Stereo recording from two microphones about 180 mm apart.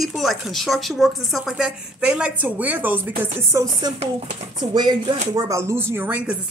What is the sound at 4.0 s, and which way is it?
Speech, 35° right (ahead or behind).